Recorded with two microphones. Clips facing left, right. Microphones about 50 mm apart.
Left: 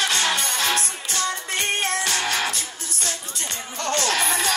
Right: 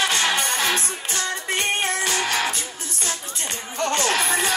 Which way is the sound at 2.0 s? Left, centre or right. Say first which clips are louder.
Right 1 dB; right.